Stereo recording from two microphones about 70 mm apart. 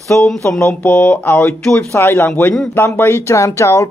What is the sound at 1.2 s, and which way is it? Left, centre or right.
Speech, left.